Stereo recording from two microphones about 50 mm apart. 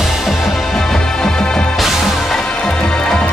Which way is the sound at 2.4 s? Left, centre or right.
Centre.